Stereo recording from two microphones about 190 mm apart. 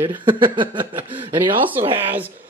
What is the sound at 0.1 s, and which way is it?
Speech, 25° right (ahead or behind).